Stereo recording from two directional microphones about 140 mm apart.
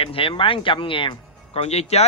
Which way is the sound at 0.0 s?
40° left (ahead or behind).